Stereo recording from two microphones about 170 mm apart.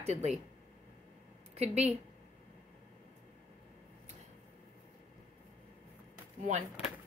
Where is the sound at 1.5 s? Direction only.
40° right (ahead or behind).